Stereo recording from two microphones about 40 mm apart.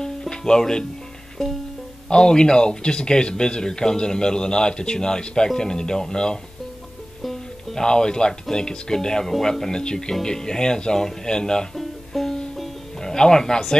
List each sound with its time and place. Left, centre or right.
0.0 s music: centre
1.4 s music: centre
2.0 s speech: centre
7.7 s speech: centre
11.7 s music: centre
13.0 s speech: centre